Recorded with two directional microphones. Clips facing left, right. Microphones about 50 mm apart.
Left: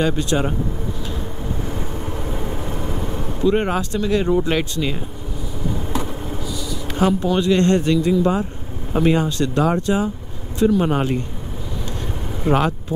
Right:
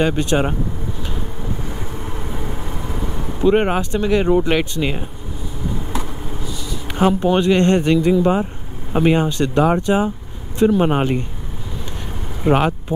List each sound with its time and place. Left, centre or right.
0.0 s speech: right
1.7 s vehicle: centre
3.3 s speech: right
6.9 s speech: right
12.4 s speech: right